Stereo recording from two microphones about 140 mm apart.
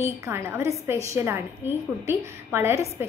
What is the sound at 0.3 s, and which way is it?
A woman's voice, 20° right (ahead or behind).